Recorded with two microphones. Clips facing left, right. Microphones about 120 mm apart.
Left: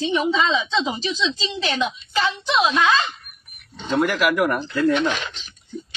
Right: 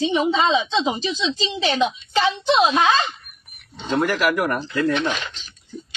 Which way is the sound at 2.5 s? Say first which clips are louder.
Right 2 dB; 30° right (ahead or behind).